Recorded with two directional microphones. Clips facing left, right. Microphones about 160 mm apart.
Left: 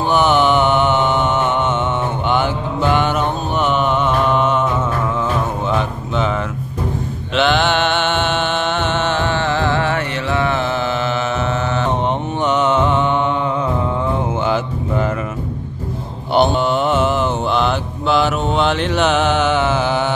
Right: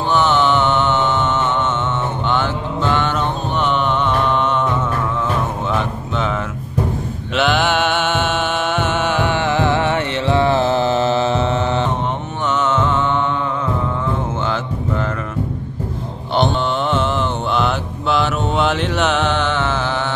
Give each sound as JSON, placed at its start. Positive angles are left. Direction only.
{"t": 0.1, "sound": "mantra", "side_deg": 10}
{"t": 5.7, "sound": "a sound", "side_deg": 0}
{"t": 7.3, "sound": "music", "side_deg": -5}
{"t": 12.4, "sound": "music", "side_deg": 15}
{"t": 16.3, "sound": "mantra", "side_deg": 10}